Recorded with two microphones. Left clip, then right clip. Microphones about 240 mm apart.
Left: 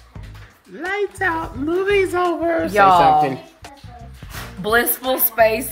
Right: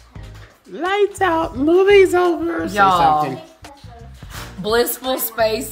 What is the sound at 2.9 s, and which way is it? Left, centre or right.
Speech, centre.